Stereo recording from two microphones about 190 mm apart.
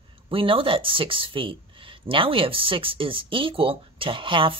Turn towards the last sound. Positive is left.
turn(degrees=-25)  # may be behind; listen again after turning